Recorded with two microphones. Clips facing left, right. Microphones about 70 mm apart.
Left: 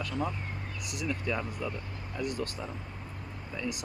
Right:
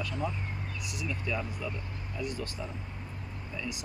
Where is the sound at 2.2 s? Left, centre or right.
Left.